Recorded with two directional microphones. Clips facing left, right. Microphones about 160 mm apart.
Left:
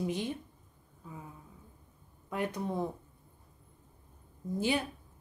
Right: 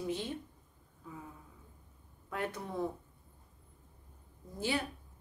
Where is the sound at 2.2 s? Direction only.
15° left (ahead or behind).